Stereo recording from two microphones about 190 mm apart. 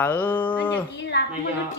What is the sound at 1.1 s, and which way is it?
Speech, 60° left (ahead or behind).